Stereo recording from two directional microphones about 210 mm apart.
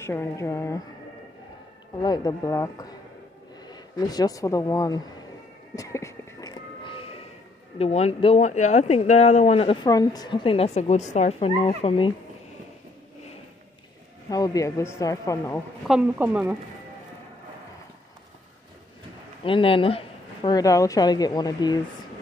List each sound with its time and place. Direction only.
0.0 s speech: 10° left (ahead or behind)
2.0 s speech: 20° left (ahead or behind)
5.8 s music: 15° left (ahead or behind)
7.8 s speech: 30° left (ahead or behind)
14.3 s speech: 15° left (ahead or behind)
15.9 s a woman's voice: 5° right (ahead or behind)
19.4 s speech: 25° left (ahead or behind)